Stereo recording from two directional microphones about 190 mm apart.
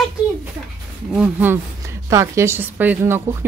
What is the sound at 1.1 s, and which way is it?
A woman's voice, 5° right (ahead or behind).